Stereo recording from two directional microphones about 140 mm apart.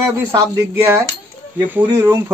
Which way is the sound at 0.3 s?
20° right (ahead or behind).